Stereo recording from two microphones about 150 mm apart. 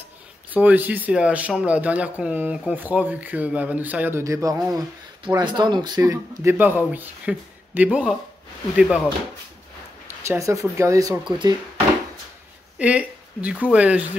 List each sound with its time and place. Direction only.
0.5 s speech: 10° right (ahead or behind)
10.0 s speech: 20° right (ahead or behind)
11.3 s speech: 30° right (ahead or behind)
12.7 s speech: 10° right (ahead or behind)